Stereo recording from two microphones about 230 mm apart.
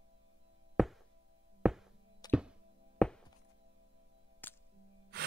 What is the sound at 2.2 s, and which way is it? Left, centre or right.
Music, centre.